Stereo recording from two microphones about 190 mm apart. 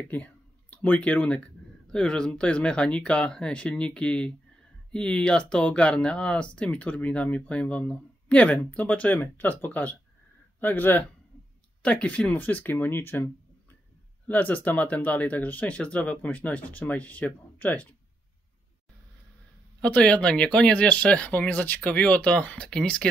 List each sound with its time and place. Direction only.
0.1 s speech: 10° left (ahead or behind)
19.8 s speech: 5° left (ahead or behind)